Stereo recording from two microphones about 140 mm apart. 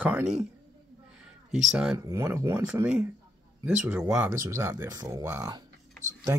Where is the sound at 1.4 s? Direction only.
5° right (ahead or behind).